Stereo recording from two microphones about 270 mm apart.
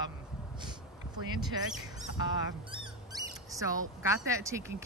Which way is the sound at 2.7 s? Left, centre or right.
Centre.